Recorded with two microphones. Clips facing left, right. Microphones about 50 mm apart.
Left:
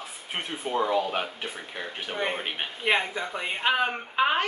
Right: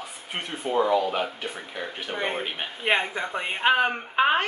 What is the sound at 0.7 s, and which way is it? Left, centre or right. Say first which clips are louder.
Speech: right 3 dB; centre.